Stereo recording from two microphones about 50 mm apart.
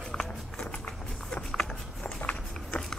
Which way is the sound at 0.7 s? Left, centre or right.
Left.